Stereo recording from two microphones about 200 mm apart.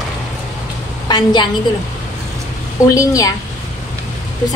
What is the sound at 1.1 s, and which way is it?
Speech, 20° left (ahead or behind).